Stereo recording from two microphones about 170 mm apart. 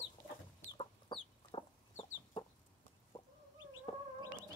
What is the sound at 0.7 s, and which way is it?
Chicken, 30° left (ahead or behind).